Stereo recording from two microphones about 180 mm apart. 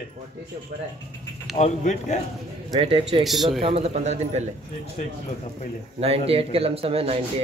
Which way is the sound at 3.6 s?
35° right (ahead or behind).